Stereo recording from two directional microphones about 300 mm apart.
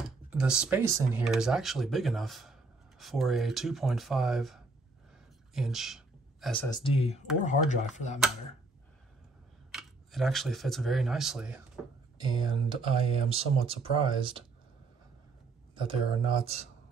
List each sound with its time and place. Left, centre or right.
0.3 s speech: centre
5.5 s a sound: centre
6.7 s speech: centre
9.7 s speech: centre
12.3 s speech: centre
15.7 s speech: centre